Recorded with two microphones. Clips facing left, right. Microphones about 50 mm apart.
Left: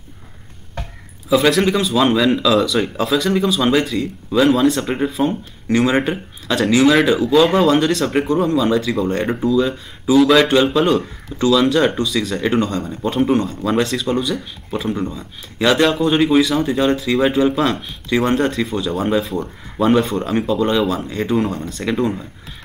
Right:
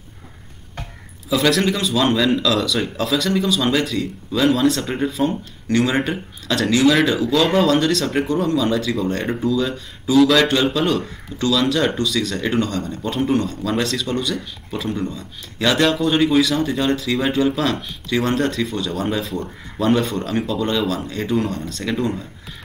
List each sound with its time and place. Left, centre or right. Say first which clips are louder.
1.3 s speech: left 3 dB; centre